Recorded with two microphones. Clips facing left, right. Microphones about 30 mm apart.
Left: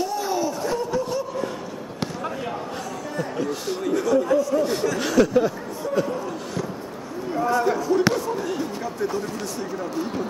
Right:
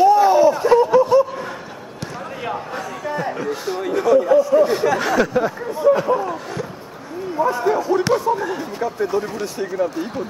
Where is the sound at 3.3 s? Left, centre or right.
Centre.